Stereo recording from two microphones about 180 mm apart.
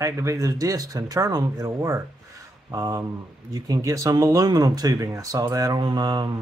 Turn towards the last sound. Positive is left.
turn(degrees=-20)  # may be behind; listen again after turning